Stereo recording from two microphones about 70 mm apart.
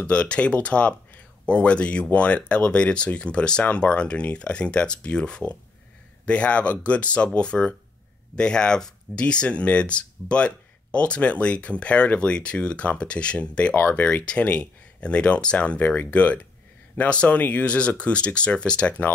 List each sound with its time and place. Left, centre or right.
0.0 s speech: centre